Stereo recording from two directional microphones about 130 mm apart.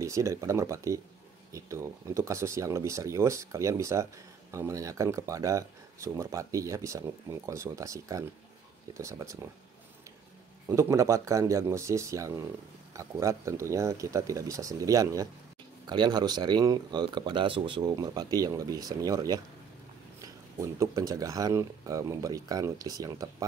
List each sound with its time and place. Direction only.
0.0 s speech: 25° right (ahead or behind)
10.7 s speech: 25° right (ahead or behind)